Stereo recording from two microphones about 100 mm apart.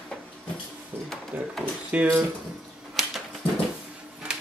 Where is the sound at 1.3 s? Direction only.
15° right (ahead or behind).